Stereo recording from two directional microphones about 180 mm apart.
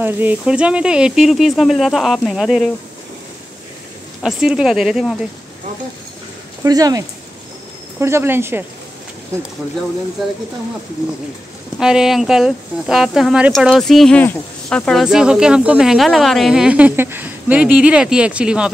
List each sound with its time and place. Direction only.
0.0 s speech: 10° right (ahead or behind)
4.2 s speech: 5° right (ahead or behind)
6.6 s speech: 20° right (ahead or behind)
11.8 s speech: 5° right (ahead or behind)